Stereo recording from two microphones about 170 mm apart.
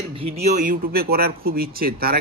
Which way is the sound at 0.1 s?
35° right (ahead or behind).